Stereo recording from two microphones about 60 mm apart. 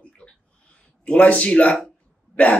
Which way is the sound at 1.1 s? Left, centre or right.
Left.